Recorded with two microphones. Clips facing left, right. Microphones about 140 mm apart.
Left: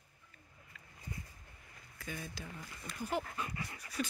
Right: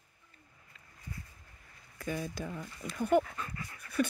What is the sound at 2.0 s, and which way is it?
Speech, 50° right (ahead or behind).